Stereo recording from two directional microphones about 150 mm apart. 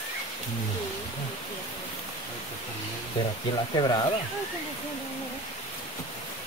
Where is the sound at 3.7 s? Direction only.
30° left (ahead or behind).